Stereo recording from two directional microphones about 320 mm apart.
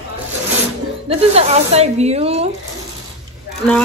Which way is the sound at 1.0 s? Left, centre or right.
Centre.